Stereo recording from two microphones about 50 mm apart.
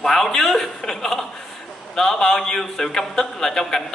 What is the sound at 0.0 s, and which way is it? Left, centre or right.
A man's voice, centre.